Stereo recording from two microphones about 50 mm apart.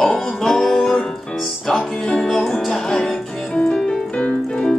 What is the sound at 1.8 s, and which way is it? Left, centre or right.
Music, left.